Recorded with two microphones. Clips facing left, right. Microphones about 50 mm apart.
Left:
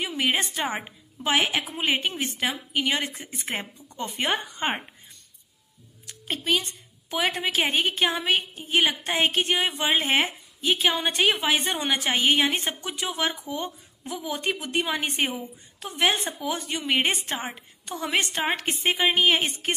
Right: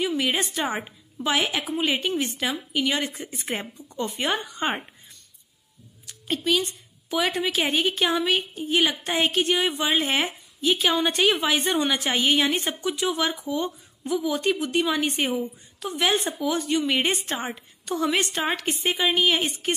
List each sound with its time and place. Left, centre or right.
0.2 s a woman's voice: left
3.9 s a woman's voice: left
6.0 s a woman's voice: left